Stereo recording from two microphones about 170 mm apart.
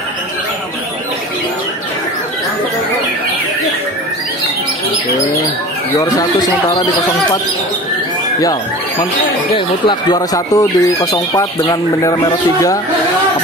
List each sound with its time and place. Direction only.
5.9 s speech: 20° left (ahead or behind)
8.4 s speech: 20° left (ahead or behind)